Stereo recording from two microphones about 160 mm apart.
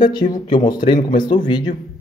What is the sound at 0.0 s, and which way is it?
Speech, 25° left (ahead or behind).